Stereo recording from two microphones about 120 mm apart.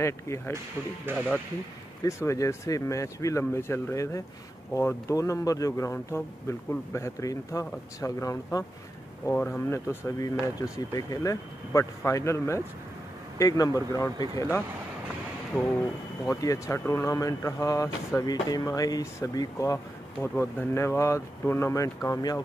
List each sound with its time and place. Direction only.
1.1 s speech: 20° right (ahead or behind)
2.0 s speech: 25° left (ahead or behind)
9.3 s speech: 15° left (ahead or behind); by 14.6 s 30° left (ahead or behind)
15.5 s speech: 15° left (ahead or behind)